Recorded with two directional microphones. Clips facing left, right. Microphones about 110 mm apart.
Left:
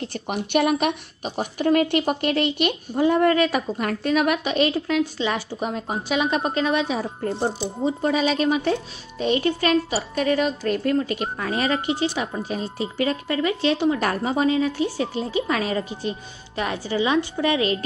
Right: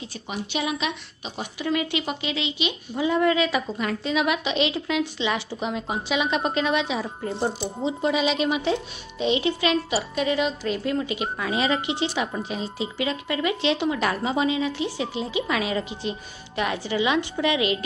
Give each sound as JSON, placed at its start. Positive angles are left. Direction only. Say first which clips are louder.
{"t": 0.0, "sound": "a woman's voice", "louder": "left 5 dB", "side_deg": 55}